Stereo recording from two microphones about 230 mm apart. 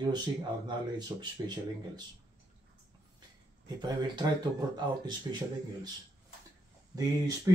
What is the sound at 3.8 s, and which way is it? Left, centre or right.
Speech, centre.